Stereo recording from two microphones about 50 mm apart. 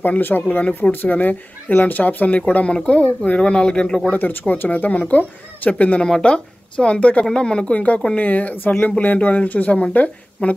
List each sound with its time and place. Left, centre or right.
0.2 s a woman's voice: left; by 4.0 s centre
4.1 s speech: left
4.6 s a woman's voice: left
6.0 s a woman's voice: centre